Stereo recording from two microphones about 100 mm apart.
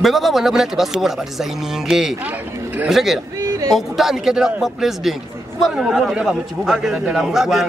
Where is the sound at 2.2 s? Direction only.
15° right (ahead or behind).